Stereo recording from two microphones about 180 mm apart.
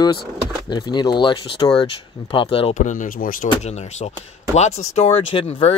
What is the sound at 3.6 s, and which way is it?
Speech, 40° left (ahead or behind).